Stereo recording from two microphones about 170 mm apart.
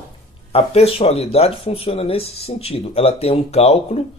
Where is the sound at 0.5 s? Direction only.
35° left (ahead or behind).